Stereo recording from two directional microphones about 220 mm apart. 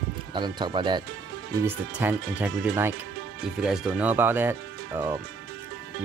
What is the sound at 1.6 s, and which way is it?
Speech, 10° right (ahead or behind).